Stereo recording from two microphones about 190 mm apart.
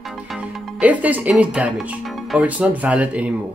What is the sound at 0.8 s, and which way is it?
Speech, 10° right (ahead or behind).